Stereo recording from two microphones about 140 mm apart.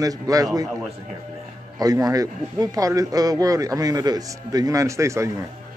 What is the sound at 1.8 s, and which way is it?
A man's voice, 25° right (ahead or behind).